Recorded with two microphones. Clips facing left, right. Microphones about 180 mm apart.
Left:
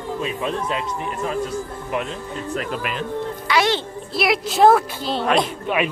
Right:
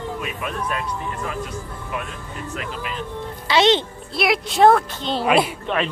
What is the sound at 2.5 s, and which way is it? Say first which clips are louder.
Speech: left 6 dB; 40° left (ahead or behind).